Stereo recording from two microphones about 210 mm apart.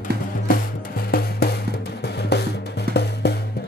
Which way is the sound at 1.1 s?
45° left (ahead or behind).